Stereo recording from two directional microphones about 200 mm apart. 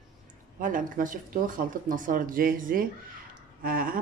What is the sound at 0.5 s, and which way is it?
Speech, 40° right (ahead or behind).